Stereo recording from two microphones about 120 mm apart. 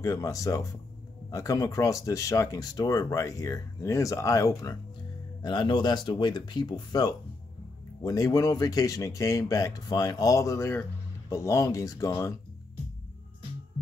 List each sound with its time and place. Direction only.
0.0 s speech: 30° left (ahead or behind)